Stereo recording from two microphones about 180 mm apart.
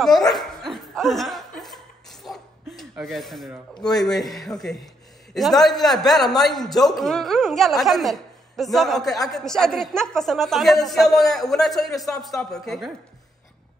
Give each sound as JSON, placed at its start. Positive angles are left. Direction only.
{"t": 0.0, "sound": "laughter", "side_deg": 0}
{"t": 3.9, "sound": "a woman's voice", "side_deg": 0}